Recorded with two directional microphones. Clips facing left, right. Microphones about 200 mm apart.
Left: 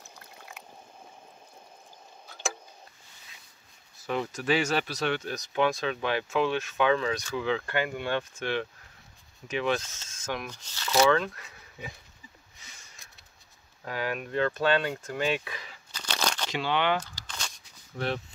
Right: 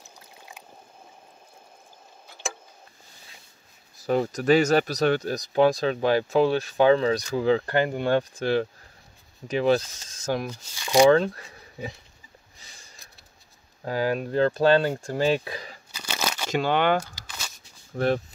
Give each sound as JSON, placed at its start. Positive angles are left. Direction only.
{"t": 4.0, "sound": "speech", "side_deg": -40}
{"t": 10.5, "sound": "speech", "side_deg": -10}
{"t": 11.1, "sound": "speech", "side_deg": -35}
{"t": 12.5, "sound": "a sound", "side_deg": -35}
{"t": 13.8, "sound": "speech", "side_deg": -35}
{"t": 15.9, "sound": "a sound", "side_deg": -10}
{"t": 16.4, "sound": "speech", "side_deg": -45}
{"t": 17.0, "sound": "a sound", "side_deg": -5}
{"t": 17.9, "sound": "speech", "side_deg": -45}